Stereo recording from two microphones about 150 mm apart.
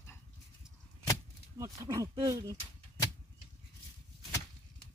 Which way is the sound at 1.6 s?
25° right (ahead or behind).